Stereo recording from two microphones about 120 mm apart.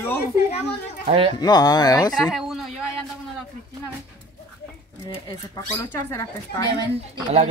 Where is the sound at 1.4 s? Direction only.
35° left (ahead or behind).